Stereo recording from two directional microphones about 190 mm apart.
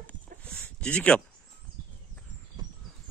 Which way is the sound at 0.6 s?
5° left (ahead or behind).